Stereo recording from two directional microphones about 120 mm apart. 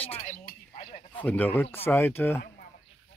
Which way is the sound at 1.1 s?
15° left (ahead or behind).